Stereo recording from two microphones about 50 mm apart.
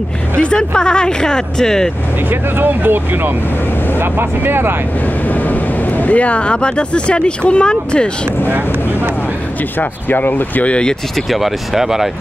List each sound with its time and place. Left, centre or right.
0.4 s speech: centre
2.2 s speech: right
5.3 s speech: left; by 8.1 s centre
8.5 s speech: right
9.8 s speech: left
10.6 s speech: left
11.2 s speech: centre